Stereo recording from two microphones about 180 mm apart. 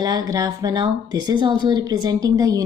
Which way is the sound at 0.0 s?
20° right (ahead or behind).